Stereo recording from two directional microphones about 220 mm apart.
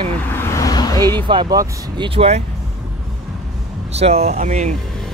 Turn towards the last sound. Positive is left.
turn(degrees=-30)  # may be behind; listen again after turning